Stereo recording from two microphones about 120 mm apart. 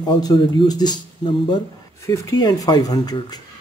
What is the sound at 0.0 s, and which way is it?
Speech, 35° left (ahead or behind).